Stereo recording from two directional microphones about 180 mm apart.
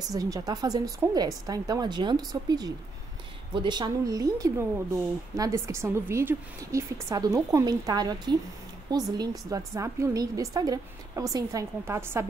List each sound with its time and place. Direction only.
0.1 s a woman's voice: 20° right (ahead or behind)